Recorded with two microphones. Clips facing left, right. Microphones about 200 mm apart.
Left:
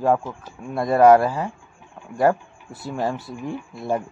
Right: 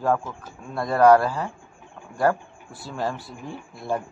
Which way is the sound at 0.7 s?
20° left (ahead or behind).